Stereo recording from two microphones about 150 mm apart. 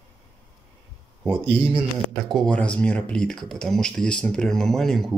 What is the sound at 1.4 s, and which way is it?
Speech, 35° right (ahead or behind).